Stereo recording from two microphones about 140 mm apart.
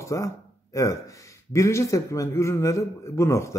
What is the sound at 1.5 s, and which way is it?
Speech, 20° left (ahead or behind).